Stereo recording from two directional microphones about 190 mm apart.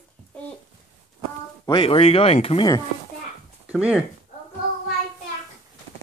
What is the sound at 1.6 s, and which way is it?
Speech, 25° left (ahead or behind).